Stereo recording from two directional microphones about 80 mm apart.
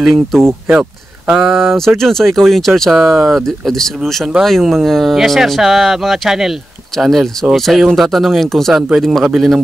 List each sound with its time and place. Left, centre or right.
0.0 s speech: centre
0.7 s speech: centre
2.0 s speech: centre